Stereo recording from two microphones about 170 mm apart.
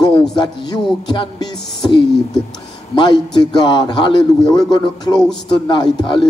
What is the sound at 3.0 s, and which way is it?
A man's voice, 25° left (ahead or behind).